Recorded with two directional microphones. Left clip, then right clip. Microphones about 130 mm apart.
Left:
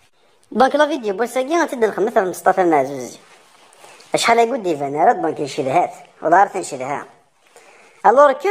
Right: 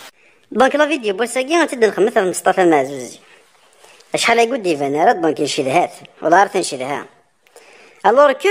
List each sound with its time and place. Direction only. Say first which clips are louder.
0.6 s a woman's voice: right 1 dB; 15° right (ahead or behind)
2.8 s a woman's voice: even; 5° right (ahead or behind)
4.3 s a woman's voice: right 1 dB; 15° right (ahead or behind)
5.0 s a man's voice: right 1 dB; 35° right (ahead or behind)
8.0 s a woman's voice: even; 15° right (ahead or behind)